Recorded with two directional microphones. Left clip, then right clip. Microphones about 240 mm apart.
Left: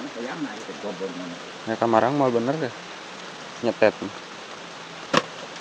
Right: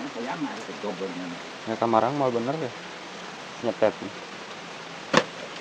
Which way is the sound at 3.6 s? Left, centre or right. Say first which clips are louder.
Left 4 dB; centre.